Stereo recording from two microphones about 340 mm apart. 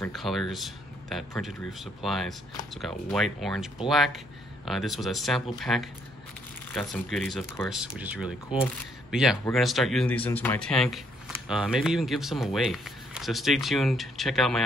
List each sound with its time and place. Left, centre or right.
0.0 s speech: centre